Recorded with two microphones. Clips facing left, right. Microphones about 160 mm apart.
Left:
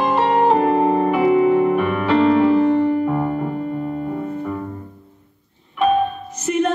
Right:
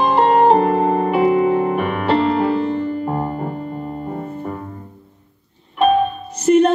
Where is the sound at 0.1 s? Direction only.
35° right (ahead or behind).